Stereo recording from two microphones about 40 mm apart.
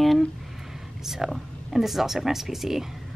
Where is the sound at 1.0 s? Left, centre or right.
Centre.